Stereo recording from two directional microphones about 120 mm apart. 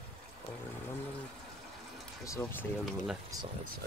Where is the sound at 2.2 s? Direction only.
25° left (ahead or behind).